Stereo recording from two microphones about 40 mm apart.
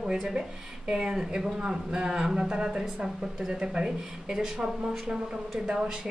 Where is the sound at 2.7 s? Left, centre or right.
Centre.